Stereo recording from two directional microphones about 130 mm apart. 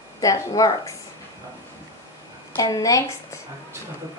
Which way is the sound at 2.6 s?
25° left (ahead or behind).